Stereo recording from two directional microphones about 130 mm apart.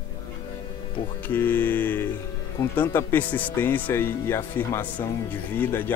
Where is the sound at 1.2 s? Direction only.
15° left (ahead or behind).